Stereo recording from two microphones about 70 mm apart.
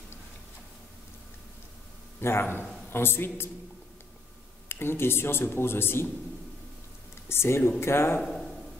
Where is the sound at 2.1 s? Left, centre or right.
Left.